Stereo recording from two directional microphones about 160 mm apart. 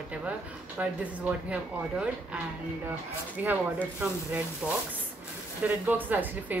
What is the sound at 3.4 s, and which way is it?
Speech, 10° right (ahead or behind).